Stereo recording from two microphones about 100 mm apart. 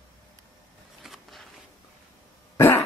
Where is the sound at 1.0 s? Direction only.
Centre (ahead or behind).